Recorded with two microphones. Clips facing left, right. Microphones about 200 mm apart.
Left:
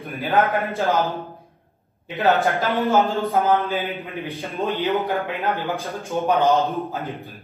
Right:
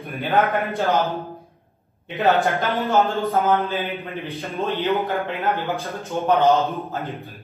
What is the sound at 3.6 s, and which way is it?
Speech, 15° left (ahead or behind).